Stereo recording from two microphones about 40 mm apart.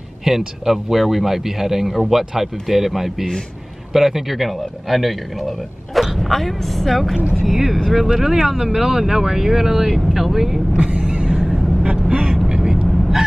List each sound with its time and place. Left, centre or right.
0.2 s a man's voice: centre
11.1 s a sound: right
11.4 s vehicle: centre
12.4 s vehicle: centre
12.8 s vehicle: centre